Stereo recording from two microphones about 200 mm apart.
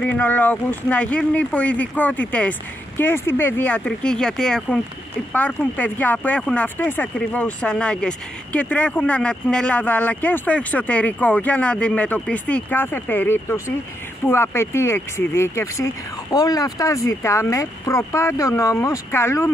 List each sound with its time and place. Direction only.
0.0 s speech: 5° left (ahead or behind)